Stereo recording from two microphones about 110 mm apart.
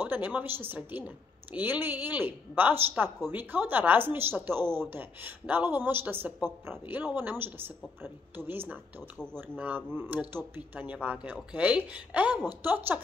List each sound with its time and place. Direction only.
0.0 s a woman's voice: 15° right (ahead or behind)
9.2 s speech: 10° left (ahead or behind)
9.6 s a woman's voice: 15° right (ahead or behind)